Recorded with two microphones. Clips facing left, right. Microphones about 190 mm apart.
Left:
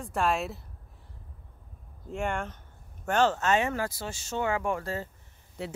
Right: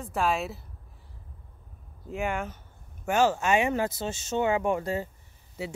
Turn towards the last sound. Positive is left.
turn(degrees=-5)  # may be behind; listen again after turning